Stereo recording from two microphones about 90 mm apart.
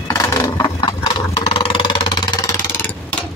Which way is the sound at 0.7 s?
65° left (ahead or behind).